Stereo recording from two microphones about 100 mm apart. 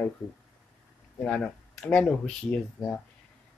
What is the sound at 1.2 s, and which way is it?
Speech, 10° left (ahead or behind).